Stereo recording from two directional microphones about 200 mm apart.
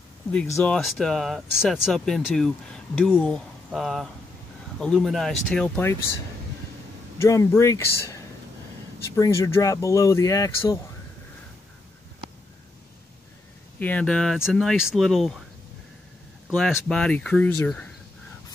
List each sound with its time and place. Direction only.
0.3 s speech: 5° left (ahead or behind)
7.2 s speech: 15° left (ahead or behind)
13.7 s speech: 5° left (ahead or behind)
16.4 s speech: centre (ahead or behind)